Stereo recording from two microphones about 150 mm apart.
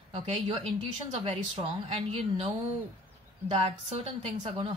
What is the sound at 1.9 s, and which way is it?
Speech, 40° right (ahead or behind).